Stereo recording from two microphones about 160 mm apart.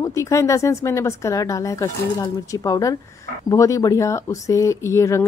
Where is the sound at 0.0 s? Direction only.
20° left (ahead or behind).